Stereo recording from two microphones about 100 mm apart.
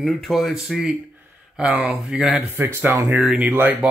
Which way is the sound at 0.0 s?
Centre (ahead or behind).